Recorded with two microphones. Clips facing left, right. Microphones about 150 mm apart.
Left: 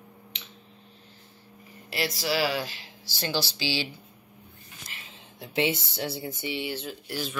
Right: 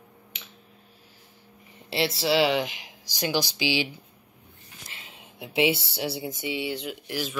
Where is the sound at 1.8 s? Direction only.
30° right (ahead or behind).